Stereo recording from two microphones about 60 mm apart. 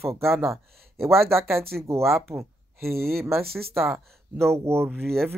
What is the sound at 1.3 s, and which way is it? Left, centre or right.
Speech, right.